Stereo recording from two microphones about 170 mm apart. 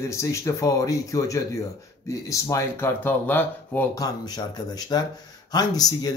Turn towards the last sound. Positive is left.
turn(degrees=20)  # may be behind; listen again after turning